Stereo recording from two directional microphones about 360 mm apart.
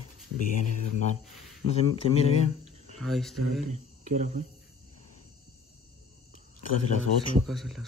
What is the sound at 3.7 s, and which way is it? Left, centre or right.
Speech, centre.